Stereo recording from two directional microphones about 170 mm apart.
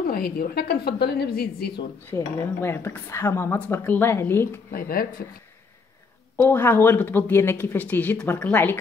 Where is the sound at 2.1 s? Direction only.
15° left (ahead or behind).